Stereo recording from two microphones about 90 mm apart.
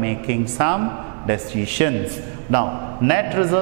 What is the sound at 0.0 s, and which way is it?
Mantra, 15° right (ahead or behind).